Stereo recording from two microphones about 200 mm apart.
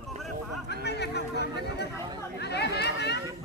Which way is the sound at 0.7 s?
55° left (ahead or behind).